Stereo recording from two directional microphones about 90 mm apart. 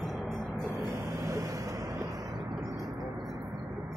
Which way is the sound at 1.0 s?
30° right (ahead or behind).